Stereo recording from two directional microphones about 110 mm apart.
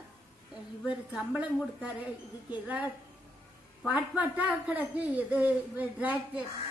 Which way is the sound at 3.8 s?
10° right (ahead or behind).